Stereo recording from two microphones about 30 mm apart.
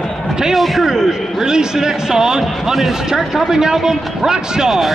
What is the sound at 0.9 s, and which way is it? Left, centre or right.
A man's voice, right.